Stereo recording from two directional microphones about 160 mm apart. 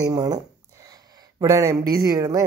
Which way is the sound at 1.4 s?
20° right (ahead or behind).